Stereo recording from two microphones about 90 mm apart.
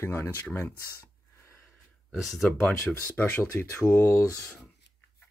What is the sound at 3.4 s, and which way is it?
Speech, 35° left (ahead or behind).